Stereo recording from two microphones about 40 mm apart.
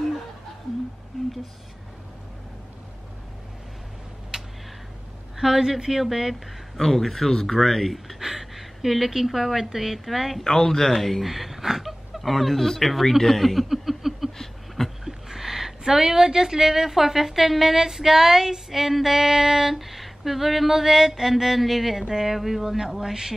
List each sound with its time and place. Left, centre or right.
4.3 s a sound: right
5.4 s speech: centre
6.8 s speech: centre
8.2 s speech: centre
10.4 s speech: centre